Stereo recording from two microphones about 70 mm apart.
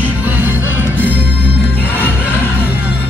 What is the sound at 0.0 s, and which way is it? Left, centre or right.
Music, right.